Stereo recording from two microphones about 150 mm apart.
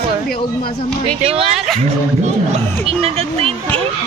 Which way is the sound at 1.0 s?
40° right (ahead or behind).